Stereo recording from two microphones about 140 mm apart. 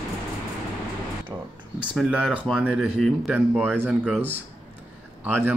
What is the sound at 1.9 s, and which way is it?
A man's voice, 10° right (ahead or behind).